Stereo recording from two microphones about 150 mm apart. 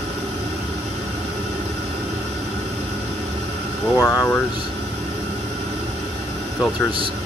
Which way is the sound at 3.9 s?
5° left (ahead or behind).